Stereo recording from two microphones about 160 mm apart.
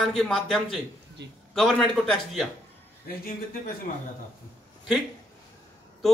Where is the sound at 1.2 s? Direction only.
90° right.